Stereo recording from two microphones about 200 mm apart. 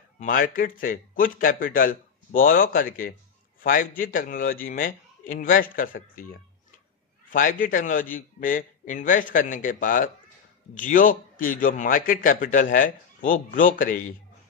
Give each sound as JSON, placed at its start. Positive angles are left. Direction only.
{"t": 0.2, "sound": "a man's voice", "side_deg": 45}
{"t": 7.2, "sound": "a man's voice", "side_deg": 40}